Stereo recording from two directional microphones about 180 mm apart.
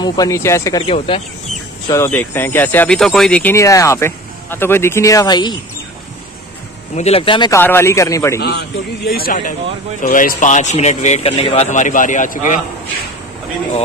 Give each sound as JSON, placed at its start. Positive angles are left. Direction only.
{"t": 0.0, "sound": "speech", "side_deg": 20}
{"t": 0.8, "sound": "speech", "side_deg": 30}
{"t": 1.9, "sound": "speech", "side_deg": 15}
{"t": 7.0, "sound": "speech", "side_deg": 35}
{"t": 7.5, "sound": "speech", "side_deg": 15}
{"t": 8.4, "sound": "a man's voice", "side_deg": 65}